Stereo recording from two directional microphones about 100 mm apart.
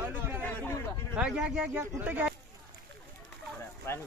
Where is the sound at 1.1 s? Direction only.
10° right (ahead or behind).